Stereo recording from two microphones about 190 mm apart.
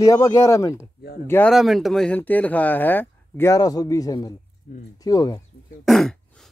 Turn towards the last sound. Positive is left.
turn(degrees=0)  # may be behind; listen again after turning